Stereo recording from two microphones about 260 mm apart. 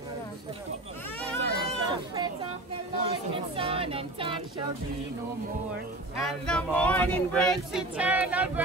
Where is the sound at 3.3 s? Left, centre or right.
Right.